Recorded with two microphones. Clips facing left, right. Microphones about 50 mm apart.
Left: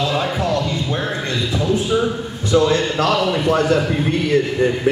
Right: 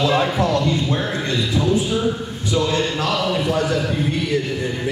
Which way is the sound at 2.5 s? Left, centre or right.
Left.